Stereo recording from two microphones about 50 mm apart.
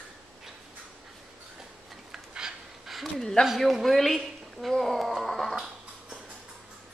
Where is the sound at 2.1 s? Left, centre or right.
Centre.